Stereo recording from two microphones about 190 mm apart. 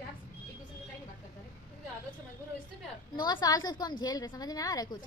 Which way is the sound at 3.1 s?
20° left (ahead or behind).